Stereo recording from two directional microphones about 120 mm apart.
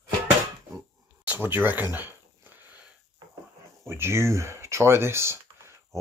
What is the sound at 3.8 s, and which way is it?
Speech, 20° right (ahead or behind).